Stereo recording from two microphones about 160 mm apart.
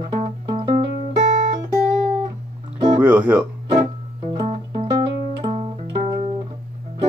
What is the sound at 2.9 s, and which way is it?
Speech, 10° right (ahead or behind).